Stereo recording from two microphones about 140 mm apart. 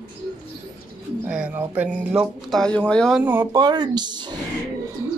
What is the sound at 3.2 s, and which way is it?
Speech, 15° right (ahead or behind).